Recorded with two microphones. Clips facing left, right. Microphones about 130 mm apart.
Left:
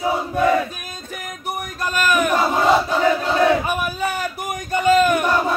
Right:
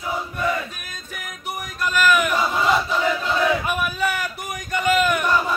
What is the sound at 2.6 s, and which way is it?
Crowd, 40° left (ahead or behind).